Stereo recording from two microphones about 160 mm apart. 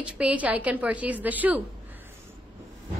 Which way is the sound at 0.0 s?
10° right (ahead or behind).